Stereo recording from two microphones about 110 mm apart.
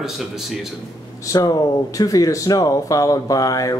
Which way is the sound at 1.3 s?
30° left (ahead or behind).